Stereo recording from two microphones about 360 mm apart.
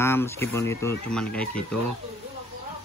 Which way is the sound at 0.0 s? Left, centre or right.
Centre.